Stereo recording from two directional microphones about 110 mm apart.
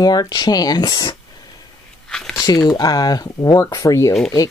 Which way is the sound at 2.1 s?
5° left (ahead or behind).